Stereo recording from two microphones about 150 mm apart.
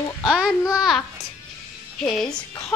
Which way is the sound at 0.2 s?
5° right (ahead or behind).